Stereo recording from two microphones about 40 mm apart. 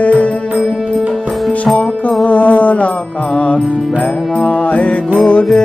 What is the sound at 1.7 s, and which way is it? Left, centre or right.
Music, left.